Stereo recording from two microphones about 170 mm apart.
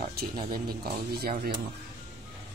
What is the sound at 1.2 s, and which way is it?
Speech, 60° right (ahead or behind).